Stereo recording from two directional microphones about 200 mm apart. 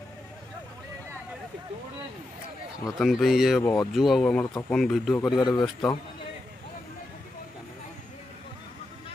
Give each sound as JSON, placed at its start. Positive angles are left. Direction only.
{"t": 2.8, "sound": "speech", "side_deg": 0}
{"t": 5.3, "sound": "speech", "side_deg": 20}